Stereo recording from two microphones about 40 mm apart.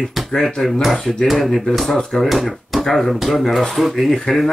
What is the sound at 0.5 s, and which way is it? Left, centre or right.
Speech, centre.